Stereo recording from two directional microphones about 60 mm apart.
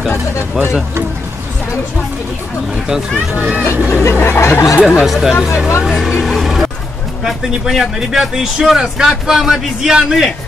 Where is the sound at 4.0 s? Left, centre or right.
Left.